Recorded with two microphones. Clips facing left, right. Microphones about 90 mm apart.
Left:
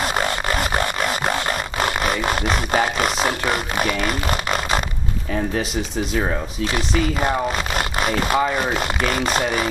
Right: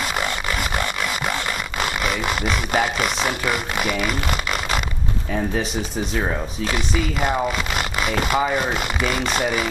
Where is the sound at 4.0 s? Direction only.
40° left (ahead or behind).